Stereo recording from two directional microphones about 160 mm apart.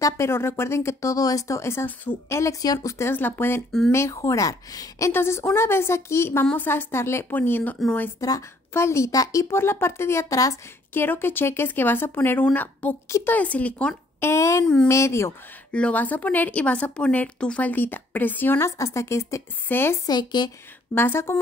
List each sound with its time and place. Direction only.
0.0 s a woman's voice: 15° left (ahead or behind)
8.2 s a woman's voice: 20° left (ahead or behind)
20.1 s speech: 25° left (ahead or behind)
20.9 s a woman's voice: 15° left (ahead or behind)